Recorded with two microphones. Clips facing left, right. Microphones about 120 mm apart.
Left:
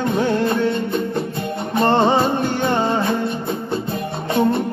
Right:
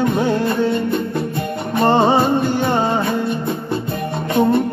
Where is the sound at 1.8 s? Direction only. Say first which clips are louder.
Right 2 dB; 10° right (ahead or behind).